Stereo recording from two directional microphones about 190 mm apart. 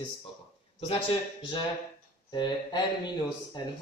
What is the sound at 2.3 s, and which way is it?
Speech, 25° left (ahead or behind).